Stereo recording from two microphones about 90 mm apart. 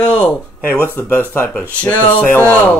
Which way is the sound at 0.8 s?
20° left (ahead or behind).